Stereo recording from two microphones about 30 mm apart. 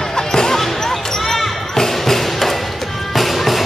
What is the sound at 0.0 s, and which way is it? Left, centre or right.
Basketball bounce, centre.